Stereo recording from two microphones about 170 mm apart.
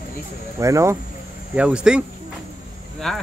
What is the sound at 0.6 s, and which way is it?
Speech, 20° right (ahead or behind).